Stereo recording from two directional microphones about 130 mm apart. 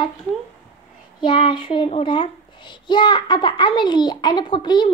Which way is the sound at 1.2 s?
40° left (ahead or behind).